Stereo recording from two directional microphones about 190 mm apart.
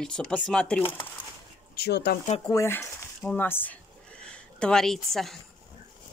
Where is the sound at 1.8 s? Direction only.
60° left (ahead or behind).